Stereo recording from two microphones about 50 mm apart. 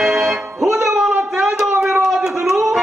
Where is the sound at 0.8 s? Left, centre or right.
Centre.